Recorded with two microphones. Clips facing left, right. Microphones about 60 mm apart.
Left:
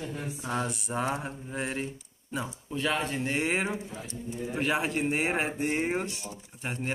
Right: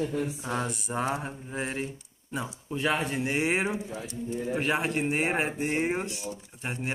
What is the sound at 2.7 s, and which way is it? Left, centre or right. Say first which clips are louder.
Speech: right 2 dB; centre.